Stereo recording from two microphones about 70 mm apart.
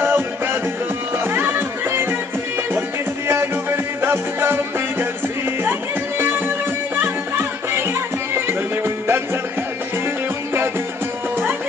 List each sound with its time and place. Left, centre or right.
0.0 s music: right
3.3 s music: right